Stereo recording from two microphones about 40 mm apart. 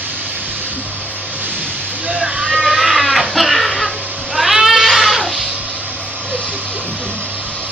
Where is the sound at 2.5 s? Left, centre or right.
Centre.